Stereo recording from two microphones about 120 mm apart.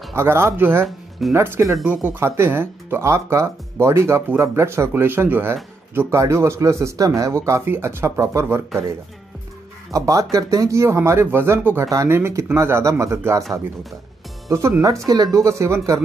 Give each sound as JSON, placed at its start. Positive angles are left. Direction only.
{"t": 0.1, "sound": "speech", "side_deg": -20}
{"t": 1.9, "sound": "speech", "side_deg": -10}
{"t": 2.1, "sound": "speech", "side_deg": -20}
{"t": 9.8, "sound": "speech", "side_deg": -25}
{"t": 14.5, "sound": "speech", "side_deg": -25}